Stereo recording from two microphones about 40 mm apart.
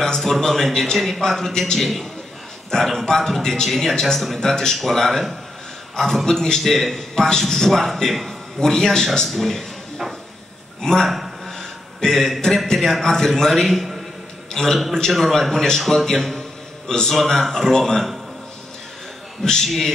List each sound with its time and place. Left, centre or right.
0.0 s a man's voice: centre
8.5 s a man's voice: centre
10.8 s a man's voice: centre
11.1 s a sound: centre
12.0 s a man's voice: centre
15.1 s a man's voice: centre
15.5 s a man's voice: centre
16.8 s a man's voice: centre
19.4 s a man's voice: centre